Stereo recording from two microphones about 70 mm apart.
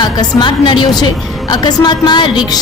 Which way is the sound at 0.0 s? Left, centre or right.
Left.